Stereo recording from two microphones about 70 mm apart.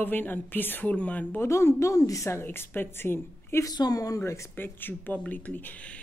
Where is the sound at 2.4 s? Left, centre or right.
Left.